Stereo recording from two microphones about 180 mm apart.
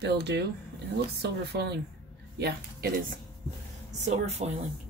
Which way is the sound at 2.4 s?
55° right (ahead or behind).